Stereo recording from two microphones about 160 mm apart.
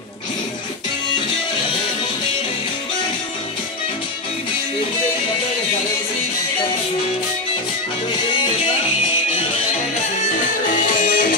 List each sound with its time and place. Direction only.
10.2 s music: 55° left (ahead or behind)